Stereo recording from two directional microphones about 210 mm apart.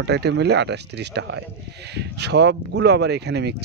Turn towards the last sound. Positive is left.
turn(degrees=-50)  # may be behind; listen again after turning